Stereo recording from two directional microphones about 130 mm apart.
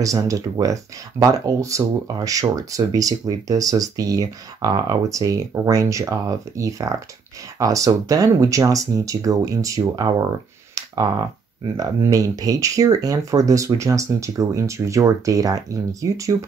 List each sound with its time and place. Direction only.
0.0 s speech: 25° right (ahead or behind)